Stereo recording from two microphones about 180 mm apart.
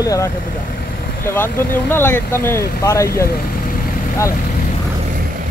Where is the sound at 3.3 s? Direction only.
55° left (ahead or behind).